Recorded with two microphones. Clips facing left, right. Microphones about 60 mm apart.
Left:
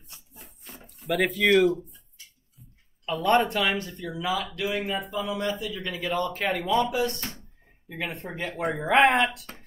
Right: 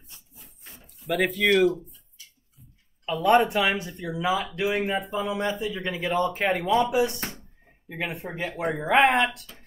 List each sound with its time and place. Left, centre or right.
0.3 s a sound: left
0.8 s speech: centre
3.1 s speech: centre